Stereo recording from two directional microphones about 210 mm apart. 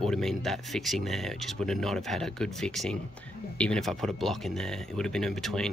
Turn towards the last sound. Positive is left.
turn(degrees=5)  # may be behind; listen again after turning